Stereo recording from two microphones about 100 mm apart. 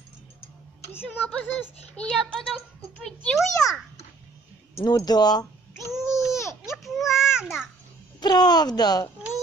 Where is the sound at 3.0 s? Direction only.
5° left (ahead or behind).